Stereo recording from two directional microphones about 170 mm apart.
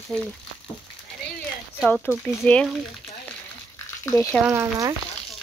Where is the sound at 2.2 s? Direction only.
5° left (ahead or behind).